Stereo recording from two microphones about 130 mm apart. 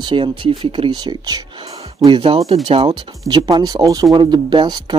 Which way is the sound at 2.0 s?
40° right (ahead or behind).